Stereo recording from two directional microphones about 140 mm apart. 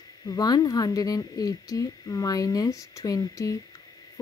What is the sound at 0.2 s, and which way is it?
A woman's voice, 25° left (ahead or behind).